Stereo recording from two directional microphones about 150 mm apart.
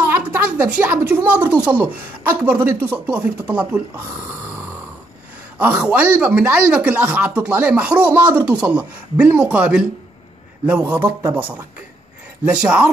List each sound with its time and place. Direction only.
0.1 s a woman's voice: 10° right (ahead or behind)
5.6 s a woman's voice: 10° right (ahead or behind)
12.4 s a woman's voice: 5° right (ahead or behind)